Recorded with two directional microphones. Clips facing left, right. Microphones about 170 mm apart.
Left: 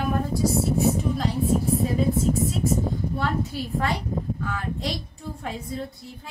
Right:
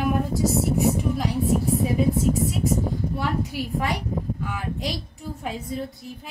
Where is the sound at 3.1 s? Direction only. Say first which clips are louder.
Even; 15° right (ahead or behind).